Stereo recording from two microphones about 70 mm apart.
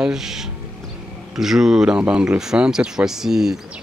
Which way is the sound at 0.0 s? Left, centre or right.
Centre.